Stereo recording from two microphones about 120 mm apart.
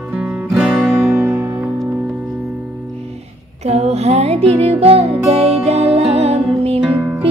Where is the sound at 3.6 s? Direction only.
65° right (ahead or behind).